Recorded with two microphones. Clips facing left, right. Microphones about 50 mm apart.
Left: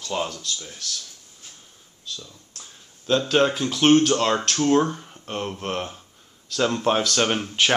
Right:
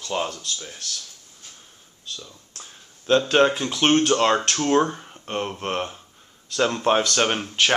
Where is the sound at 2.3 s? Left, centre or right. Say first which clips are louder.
Right 2 dB; centre.